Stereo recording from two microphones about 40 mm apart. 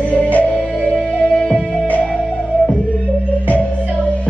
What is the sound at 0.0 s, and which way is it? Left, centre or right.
Music, left.